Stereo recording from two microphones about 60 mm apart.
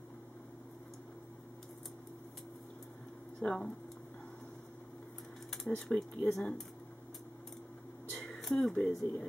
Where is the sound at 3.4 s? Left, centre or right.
Centre.